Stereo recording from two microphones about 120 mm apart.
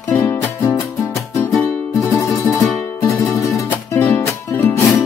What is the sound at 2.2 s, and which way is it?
Music, 25° left (ahead or behind).